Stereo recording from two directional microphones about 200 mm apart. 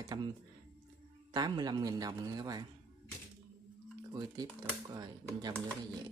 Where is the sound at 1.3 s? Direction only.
20° right (ahead or behind).